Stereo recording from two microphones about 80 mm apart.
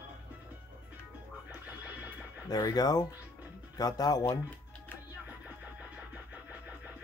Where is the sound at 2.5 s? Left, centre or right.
Left.